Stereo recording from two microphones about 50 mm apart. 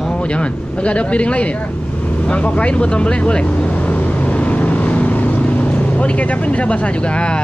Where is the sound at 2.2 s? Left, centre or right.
Left.